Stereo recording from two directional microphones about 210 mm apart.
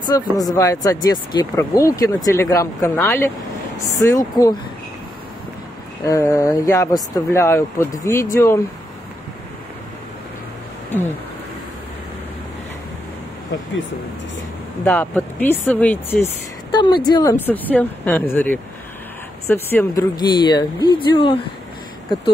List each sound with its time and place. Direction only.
0.0 s speech: 20° left (ahead or behind)
6.0 s speech: 15° left (ahead or behind)
14.9 s speech: 10° left (ahead or behind)
16.7 s speech: 20° left (ahead or behind)